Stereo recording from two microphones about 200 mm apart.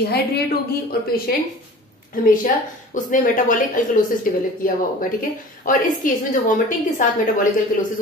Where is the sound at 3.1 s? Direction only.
40° left (ahead or behind).